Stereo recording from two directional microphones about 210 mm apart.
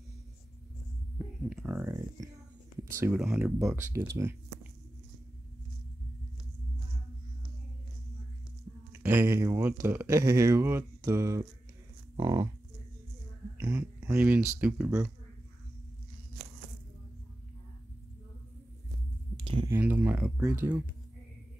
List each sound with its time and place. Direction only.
1.1 s a sound: 5° right (ahead or behind)
2.8 s speech: 10° right (ahead or behind)
8.9 s speech: 10° right (ahead or behind)
13.6 s speech: 10° right (ahead or behind)
19.3 s a sound: 25° right (ahead or behind)
19.7 s speech: 10° right (ahead or behind)